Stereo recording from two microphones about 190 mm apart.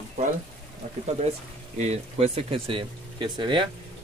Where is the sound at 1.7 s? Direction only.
35° right (ahead or behind).